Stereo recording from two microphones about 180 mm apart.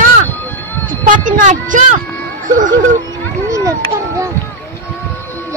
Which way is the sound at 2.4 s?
45° right (ahead or behind).